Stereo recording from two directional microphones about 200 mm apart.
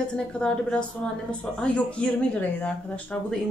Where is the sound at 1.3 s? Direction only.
5° left (ahead or behind).